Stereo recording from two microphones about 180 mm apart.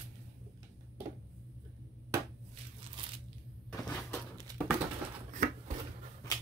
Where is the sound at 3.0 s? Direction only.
25° right (ahead or behind).